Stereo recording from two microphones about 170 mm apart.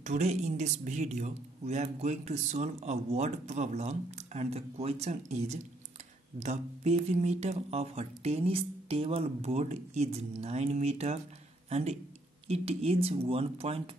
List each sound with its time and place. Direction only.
0.0 s speech: 45° right (ahead or behind)